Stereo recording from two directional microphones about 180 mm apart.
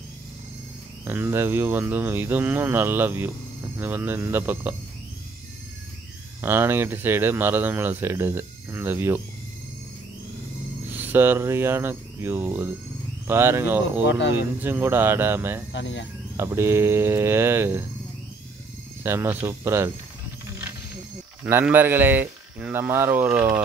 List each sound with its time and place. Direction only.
1.0 s speech: 10° right (ahead or behind)
6.4 s speech: 10° right (ahead or behind)
10.9 s speech: 10° right (ahead or behind)
14.0 s speech: 90° left
14.3 s speech: 10° right (ahead or behind)
15.7 s speech: 85° left
16.3 s speech: 15° right (ahead or behind)
19.0 s speech: 15° right (ahead or behind)
21.5 s speech: 10° right (ahead or behind)